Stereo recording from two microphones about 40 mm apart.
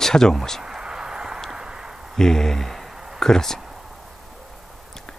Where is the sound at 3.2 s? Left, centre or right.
Centre.